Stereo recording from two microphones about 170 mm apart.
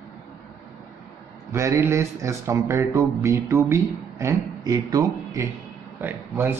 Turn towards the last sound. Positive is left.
turn(degrees=-15)  # may be behind; listen again after turning